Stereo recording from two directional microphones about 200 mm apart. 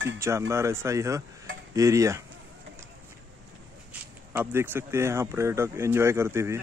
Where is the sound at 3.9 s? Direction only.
10° right (ahead or behind).